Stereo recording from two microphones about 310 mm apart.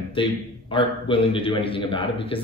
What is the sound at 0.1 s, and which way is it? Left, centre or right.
A man's voice, centre.